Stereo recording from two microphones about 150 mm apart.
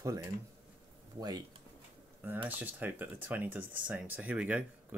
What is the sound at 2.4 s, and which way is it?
Speech, 10° right (ahead or behind).